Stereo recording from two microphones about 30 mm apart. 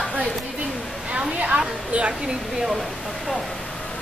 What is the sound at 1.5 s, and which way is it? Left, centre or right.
Speech, right.